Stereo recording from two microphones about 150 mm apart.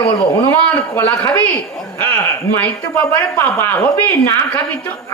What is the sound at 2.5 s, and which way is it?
A man's voice, 15° left (ahead or behind).